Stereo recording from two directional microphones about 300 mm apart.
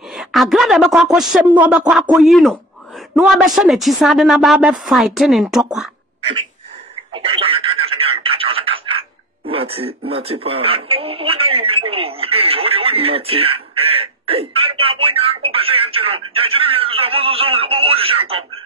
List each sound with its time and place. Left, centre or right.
0.2 s a woman's voice: centre
7.2 s a sound: centre
9.5 s speech: centre